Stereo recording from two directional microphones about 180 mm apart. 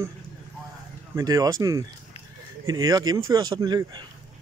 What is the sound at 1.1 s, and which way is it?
Speech, 20° right (ahead or behind).